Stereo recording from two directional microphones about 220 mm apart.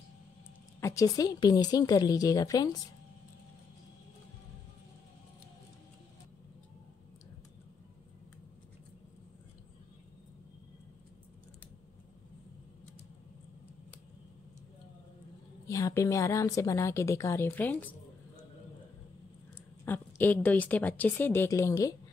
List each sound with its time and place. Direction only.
0.7 s a woman's voice: 15° left (ahead or behind)
15.6 s a woman's voice: 15° left (ahead or behind)
19.8 s a woman's voice: 10° left (ahead or behind)